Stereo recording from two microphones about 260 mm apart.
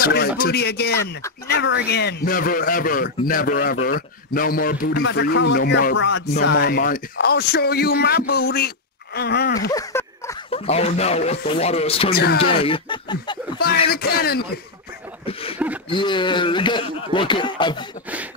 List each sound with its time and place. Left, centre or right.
0.0 s a man's voice: left
9.7 s a sound: centre
10.5 s speech: left
13.8 s a man's voice: left
15.9 s speech: centre